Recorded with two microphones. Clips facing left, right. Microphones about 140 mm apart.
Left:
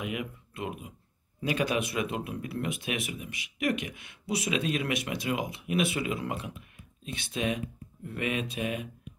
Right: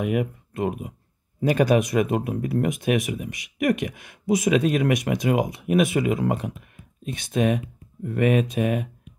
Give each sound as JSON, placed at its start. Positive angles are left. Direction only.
{"t": 0.1, "sound": "speech", "side_deg": -45}